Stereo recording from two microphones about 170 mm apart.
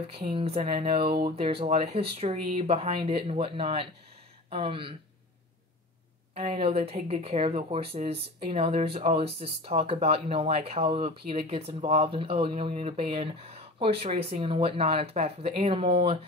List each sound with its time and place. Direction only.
0.3 s speech: 35° right (ahead or behind)
6.3 s speech: 35° right (ahead or behind)